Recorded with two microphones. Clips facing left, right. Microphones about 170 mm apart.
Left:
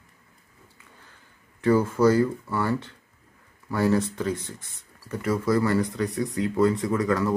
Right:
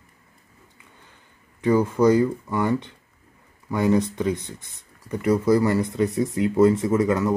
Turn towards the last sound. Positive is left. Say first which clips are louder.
# right 3 dB
turn(degrees=-20)  # may be behind; listen again after turning